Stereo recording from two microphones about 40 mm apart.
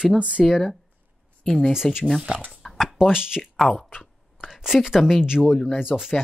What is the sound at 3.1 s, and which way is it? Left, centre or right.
Speech, centre.